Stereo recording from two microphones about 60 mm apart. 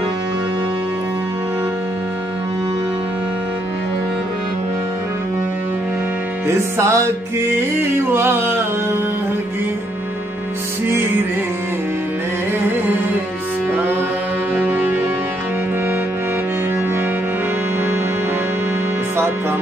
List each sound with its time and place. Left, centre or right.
6.4 s music: right
8.1 s music: right
14.5 s brass instrument: right